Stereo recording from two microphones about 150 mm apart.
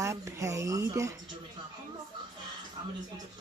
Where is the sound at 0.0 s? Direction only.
20° right (ahead or behind).